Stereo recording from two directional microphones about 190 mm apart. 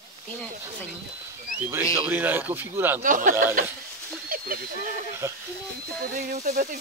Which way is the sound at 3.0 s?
45° right (ahead or behind).